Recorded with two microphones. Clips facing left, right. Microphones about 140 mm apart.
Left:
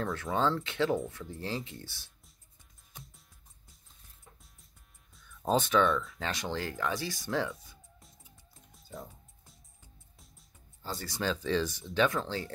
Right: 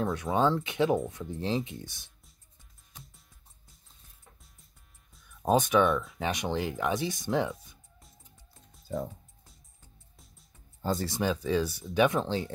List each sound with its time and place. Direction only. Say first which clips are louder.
0.0 s speech: right 4 dB; 20° right (ahead or behind)
2.9 s music: left 1 dB; centre (ahead or behind)
5.4 s speech: right 3 dB; 15° right (ahead or behind)
11.1 s speech: left 2 dB; 15° right (ahead or behind)